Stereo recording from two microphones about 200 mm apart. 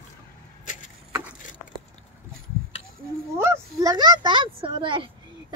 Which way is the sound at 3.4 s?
15° right (ahead or behind).